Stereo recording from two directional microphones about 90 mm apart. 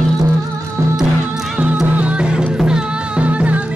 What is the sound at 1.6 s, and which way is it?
Music, 15° right (ahead or behind).